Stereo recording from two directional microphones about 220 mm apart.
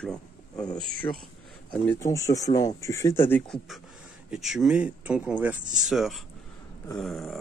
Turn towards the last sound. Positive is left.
turn(degrees=0)  # may be behind; listen again after turning